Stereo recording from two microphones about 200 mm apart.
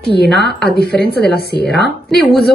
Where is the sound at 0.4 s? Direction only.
55° left (ahead or behind).